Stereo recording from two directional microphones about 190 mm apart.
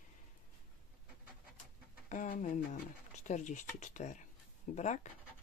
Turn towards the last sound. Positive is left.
turn(degrees=40)  # may be behind; listen again after turning